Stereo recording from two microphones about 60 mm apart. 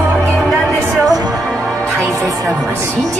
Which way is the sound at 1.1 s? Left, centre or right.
Right.